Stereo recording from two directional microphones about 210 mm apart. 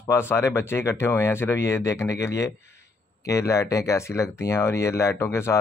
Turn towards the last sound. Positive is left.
turn(degrees=15)  # may be behind; listen again after turning